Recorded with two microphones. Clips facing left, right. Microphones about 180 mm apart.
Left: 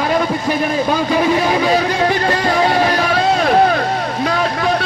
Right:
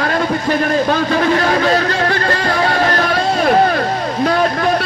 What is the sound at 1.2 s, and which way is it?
Speech, 10° left (ahead or behind).